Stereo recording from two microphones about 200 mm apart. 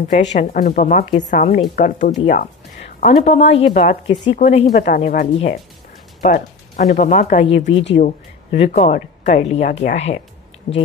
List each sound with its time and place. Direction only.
0.3 s speech: 40° left (ahead or behind)
4.1 s speech: 25° left (ahead or behind)
10.7 s speech: 50° left (ahead or behind)